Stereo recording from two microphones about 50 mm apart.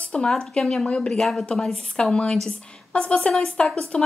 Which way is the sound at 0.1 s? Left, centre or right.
Centre.